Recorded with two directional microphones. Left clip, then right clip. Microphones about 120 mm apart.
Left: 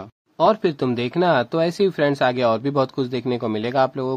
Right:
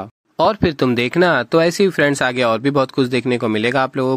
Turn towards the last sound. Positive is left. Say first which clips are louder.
# right 3 dB
turn(degrees=-25)  # may be behind; listen again after turning